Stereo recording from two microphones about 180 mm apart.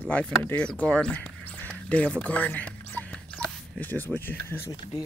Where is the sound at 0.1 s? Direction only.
5° left (ahead or behind).